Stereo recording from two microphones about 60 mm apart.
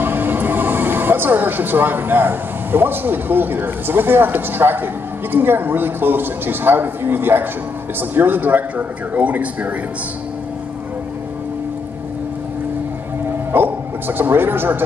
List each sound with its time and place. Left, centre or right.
0.0 s a man's voice: right
13.5 s speech: right